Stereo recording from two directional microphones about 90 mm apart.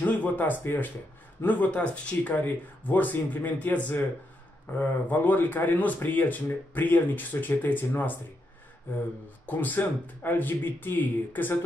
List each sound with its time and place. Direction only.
0.0 s speech: 20° left (ahead or behind)
9.5 s speech: 20° left (ahead or behind)